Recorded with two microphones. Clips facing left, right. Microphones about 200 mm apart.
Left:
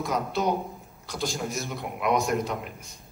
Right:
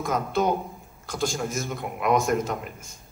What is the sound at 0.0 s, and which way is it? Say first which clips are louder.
Speech: right 3 dB; 50° right (ahead or behind).